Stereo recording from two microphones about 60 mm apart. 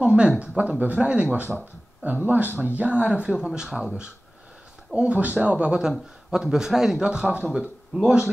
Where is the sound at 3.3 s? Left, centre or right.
Centre.